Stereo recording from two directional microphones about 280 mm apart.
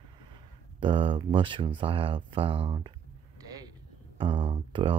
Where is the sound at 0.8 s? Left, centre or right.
Centre.